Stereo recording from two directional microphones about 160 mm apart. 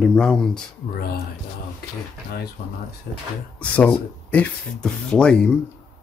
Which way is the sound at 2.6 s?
85° left.